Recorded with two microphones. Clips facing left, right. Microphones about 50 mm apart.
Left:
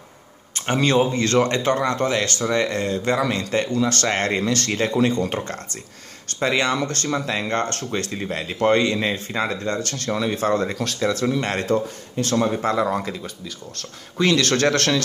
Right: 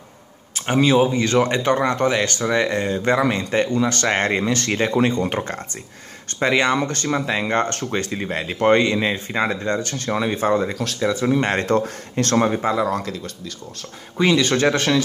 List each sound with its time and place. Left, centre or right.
0.6 s speech: centre
10.7 s speech: centre
11.3 s speech: right
11.6 s speech: right
12.7 s speech: centre
14.1 s speech: centre